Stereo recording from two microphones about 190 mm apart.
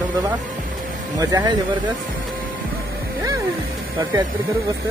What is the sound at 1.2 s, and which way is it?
Speech, 20° right (ahead or behind).